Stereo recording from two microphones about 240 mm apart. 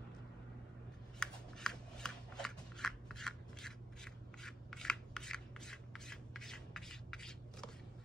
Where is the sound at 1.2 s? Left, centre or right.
Centre.